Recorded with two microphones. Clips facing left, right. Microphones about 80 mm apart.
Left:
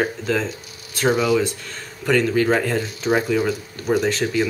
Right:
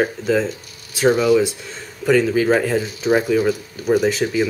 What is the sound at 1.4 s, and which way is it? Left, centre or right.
Speech, centre.